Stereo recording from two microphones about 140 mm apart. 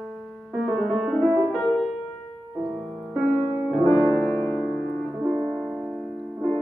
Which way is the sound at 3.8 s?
5° left (ahead or behind).